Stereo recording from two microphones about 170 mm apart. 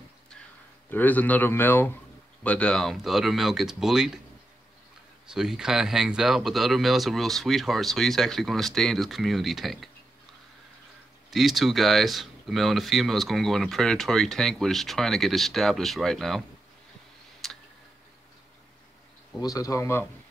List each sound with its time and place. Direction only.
0.8 s a man's voice: 10° left (ahead or behind)
5.3 s speech: 5° right (ahead or behind)
11.2 s speech: centre (ahead or behind)
17.4 s tick: centre (ahead or behind)
19.4 s speech: 20° left (ahead or behind)